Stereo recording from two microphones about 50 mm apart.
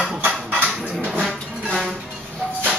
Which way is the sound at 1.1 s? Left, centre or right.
Centre.